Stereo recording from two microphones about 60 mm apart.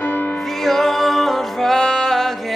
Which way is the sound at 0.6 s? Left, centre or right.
Centre.